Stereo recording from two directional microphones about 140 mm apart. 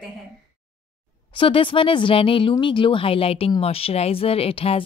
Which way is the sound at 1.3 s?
40° left (ahead or behind).